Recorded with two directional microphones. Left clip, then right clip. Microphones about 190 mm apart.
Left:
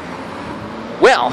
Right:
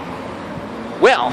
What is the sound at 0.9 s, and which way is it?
Speech, 15° left (ahead or behind).